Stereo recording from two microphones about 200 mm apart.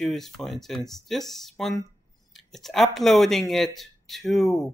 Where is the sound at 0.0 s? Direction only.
Centre (ahead or behind).